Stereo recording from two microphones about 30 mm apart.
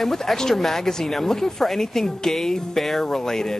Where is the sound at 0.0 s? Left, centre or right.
Centre.